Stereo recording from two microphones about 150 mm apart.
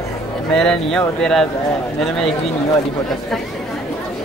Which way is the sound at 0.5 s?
5° left (ahead or behind).